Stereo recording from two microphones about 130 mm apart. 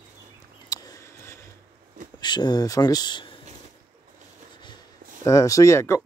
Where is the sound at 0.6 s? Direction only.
30° left (ahead or behind).